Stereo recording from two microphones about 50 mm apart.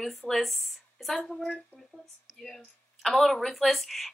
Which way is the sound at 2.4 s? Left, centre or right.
Centre.